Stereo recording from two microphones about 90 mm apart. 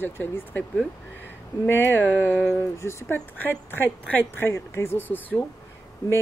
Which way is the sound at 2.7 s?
30° left (ahead or behind).